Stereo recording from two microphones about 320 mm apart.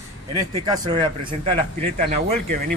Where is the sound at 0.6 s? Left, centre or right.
Centre.